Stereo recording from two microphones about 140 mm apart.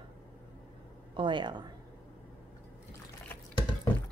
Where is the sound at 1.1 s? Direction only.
35° right (ahead or behind).